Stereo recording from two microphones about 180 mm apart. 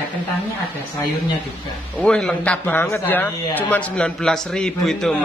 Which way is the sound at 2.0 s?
5° left (ahead or behind).